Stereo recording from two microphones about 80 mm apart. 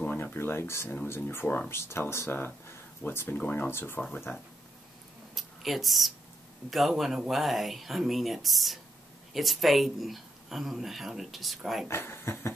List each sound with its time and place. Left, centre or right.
0.0 s speech: left
5.3 s a sound: centre
6.7 s speech: centre
11.9 s speech: left